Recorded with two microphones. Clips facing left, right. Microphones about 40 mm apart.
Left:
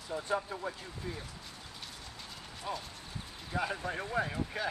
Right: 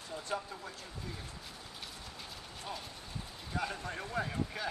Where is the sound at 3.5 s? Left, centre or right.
Centre.